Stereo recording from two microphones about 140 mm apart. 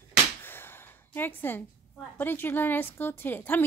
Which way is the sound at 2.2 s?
15° left (ahead or behind).